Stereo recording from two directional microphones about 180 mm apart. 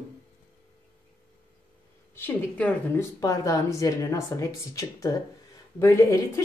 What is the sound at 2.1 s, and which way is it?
A woman's voice, 10° left (ahead or behind).